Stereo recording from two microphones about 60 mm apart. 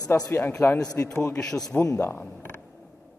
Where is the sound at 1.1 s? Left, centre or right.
Left.